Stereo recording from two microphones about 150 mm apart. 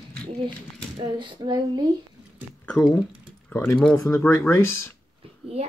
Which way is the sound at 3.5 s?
15° left (ahead or behind).